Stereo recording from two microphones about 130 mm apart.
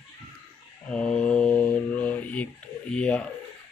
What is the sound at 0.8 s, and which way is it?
Mantra, 5° left (ahead or behind).